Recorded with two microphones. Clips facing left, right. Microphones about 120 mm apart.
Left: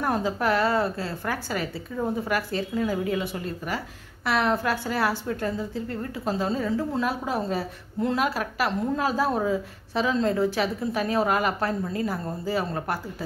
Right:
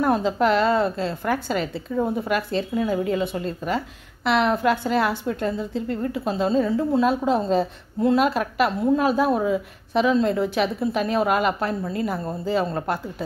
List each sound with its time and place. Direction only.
0.0 s a woman's voice: 20° right (ahead or behind)